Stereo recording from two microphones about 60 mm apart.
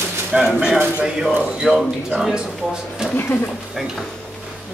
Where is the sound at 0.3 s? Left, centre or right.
Centre.